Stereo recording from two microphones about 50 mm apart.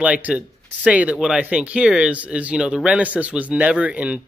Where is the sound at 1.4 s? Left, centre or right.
Right.